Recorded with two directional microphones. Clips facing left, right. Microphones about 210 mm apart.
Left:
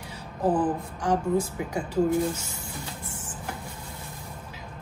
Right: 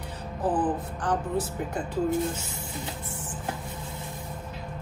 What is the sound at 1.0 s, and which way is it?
Speech, 10° left (ahead or behind).